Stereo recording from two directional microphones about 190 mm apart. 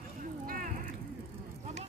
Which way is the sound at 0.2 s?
50° right (ahead or behind).